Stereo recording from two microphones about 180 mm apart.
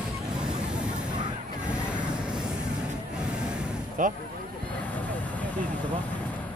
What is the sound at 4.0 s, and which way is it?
Speech, 45° right (ahead or behind).